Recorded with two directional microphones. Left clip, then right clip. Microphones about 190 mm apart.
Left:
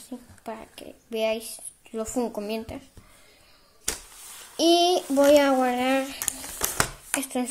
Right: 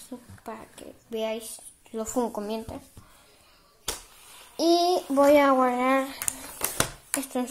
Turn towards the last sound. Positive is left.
turn(degrees=0)  # may be behind; listen again after turning